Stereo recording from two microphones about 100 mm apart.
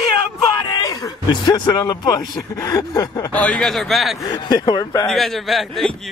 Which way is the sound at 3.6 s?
5° left (ahead or behind).